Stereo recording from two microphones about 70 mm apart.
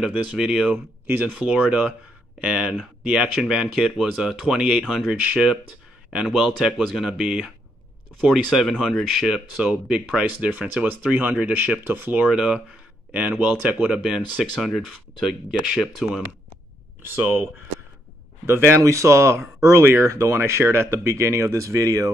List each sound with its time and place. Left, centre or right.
0.0 s speech: centre
8.5 s speech: centre
9.3 s speech: centre
12.3 s speech: centre
14.4 s speech: centre
17.1 s speech: right
18.8 s speech: right